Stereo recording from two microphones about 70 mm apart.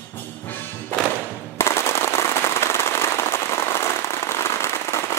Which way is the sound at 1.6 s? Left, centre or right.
Left.